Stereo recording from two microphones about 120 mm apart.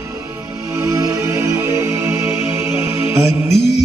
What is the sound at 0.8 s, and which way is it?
Music, 25° right (ahead or behind).